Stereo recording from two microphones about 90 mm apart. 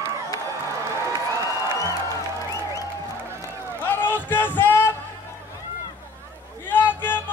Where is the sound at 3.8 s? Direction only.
20° left (ahead or behind).